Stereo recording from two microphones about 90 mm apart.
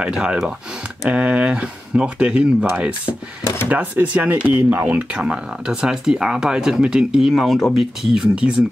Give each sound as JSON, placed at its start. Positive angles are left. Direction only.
{"t": 0.0, "sound": "speech", "side_deg": -10}
{"t": 3.6, "sound": "speech", "side_deg": -15}